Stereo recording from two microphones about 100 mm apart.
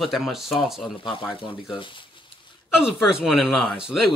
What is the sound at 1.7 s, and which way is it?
Speech, 55° left (ahead or behind).